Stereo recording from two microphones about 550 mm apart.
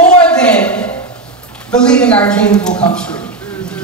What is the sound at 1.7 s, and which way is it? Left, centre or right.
A woman's voice, centre.